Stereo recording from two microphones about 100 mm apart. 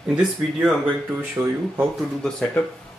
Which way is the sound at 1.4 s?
20° right (ahead or behind).